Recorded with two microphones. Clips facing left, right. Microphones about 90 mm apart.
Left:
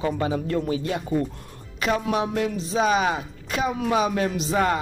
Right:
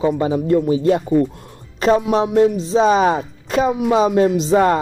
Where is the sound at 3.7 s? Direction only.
20° right (ahead or behind).